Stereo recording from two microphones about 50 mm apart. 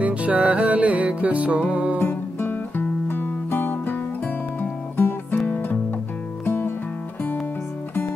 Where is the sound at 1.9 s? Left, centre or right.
Left.